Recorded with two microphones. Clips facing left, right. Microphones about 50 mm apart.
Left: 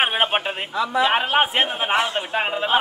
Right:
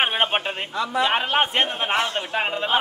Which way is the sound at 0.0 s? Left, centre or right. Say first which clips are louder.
Left 1 dB; centre.